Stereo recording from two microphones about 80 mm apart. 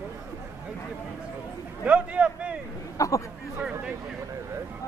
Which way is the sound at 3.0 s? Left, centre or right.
Left.